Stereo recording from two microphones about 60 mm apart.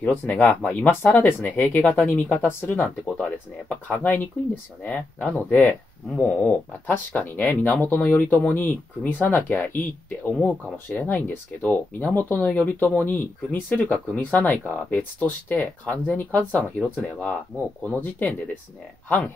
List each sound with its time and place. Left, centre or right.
0.0 s speech: left